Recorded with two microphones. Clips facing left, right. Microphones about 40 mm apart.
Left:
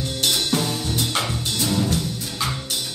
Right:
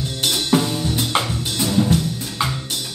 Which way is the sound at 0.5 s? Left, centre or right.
Right.